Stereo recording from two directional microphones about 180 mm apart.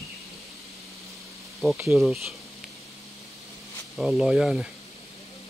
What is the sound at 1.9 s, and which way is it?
Speech, centre (ahead or behind).